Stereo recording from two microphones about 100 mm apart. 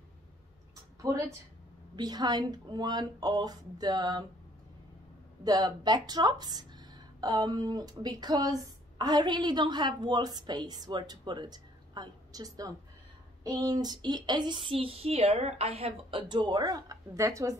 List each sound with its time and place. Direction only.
2.0 s speech: 45° right (ahead or behind)
5.4 s speech: 45° right (ahead or behind); by 16.3 s 75° right (ahead or behind)
16.3 s speech: 50° right (ahead or behind); by 17.6 s 30° right (ahead or behind)